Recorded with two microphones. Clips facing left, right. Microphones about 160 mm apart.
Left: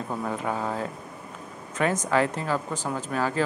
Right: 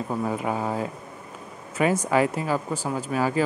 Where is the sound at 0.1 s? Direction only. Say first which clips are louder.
Right 2 dB; 10° right (ahead or behind).